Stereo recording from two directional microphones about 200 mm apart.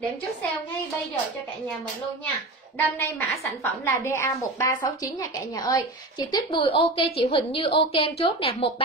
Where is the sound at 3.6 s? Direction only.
10° left (ahead or behind).